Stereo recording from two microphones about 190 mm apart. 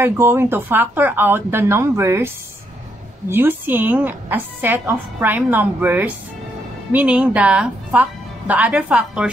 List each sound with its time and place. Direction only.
0.0 s a woman's voice: 10° right (ahead or behind)